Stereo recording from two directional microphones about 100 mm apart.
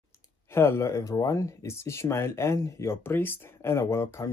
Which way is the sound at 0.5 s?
25° left (ahead or behind).